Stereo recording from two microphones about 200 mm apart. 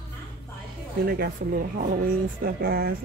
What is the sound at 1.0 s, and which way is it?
Speech, 45° right (ahead or behind).